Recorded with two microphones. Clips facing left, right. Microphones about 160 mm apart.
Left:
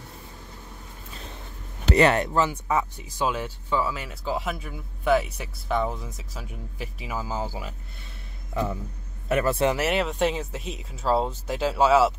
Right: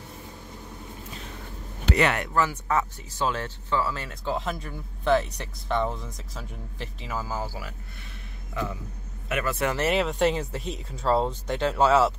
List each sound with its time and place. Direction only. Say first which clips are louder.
1.9 s speech: left 4 dB; 35° left (ahead or behind)
2.3 s speech: left 1 dB; 15° left (ahead or behind)
9.3 s speech: left 5 dB; 30° left (ahead or behind)
9.8 s speech: even; centre (ahead or behind)